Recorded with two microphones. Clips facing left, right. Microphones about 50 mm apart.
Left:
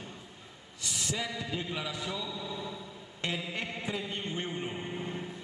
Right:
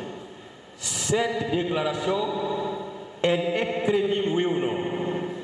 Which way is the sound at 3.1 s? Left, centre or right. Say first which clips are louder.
Right 12 dB; right.